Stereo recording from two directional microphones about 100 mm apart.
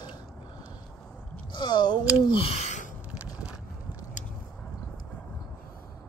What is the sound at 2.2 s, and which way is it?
Speech, 65° left (ahead or behind).